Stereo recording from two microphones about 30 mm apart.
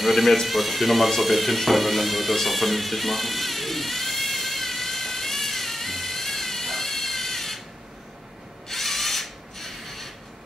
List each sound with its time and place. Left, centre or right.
0.0 s music: centre
8.6 s rub: centre